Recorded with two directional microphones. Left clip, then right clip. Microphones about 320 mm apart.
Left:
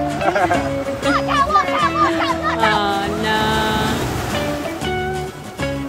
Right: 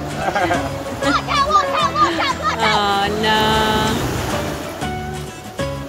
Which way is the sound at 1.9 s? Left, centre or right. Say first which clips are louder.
Even; right.